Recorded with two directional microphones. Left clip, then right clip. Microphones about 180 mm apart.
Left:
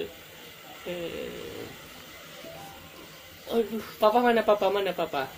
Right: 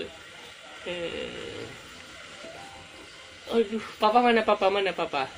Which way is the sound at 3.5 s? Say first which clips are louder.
Right 2 dB; 15° right (ahead or behind).